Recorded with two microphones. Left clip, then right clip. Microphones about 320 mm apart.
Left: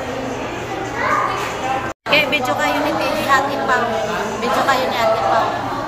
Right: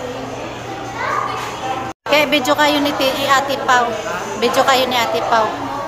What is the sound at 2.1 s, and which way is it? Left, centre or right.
Speech, centre.